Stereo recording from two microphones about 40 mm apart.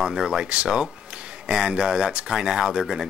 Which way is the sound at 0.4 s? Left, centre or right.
Right.